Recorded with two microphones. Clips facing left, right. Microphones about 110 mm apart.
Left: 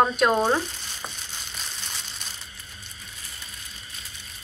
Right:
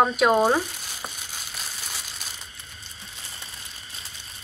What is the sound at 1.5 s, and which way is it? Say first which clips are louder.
Crumpling: right 1 dB; 5° right (ahead or behind).